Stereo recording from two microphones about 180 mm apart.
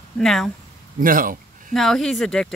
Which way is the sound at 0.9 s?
50° right (ahead or behind).